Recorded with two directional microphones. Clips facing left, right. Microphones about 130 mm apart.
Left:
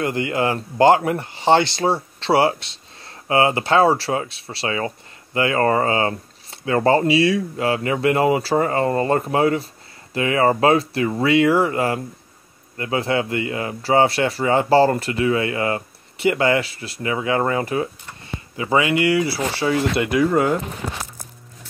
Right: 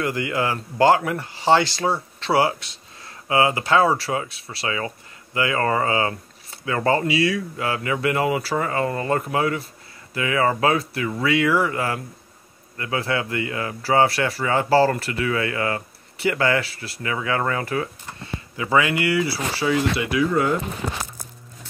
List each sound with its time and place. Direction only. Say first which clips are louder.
0.0 s a man's voice: left 3 dB; 25° left (ahead or behind)
19.1 s speech: left 3 dB; 35° left (ahead or behind)
20.0 s speech: left 3 dB; 45° left (ahead or behind)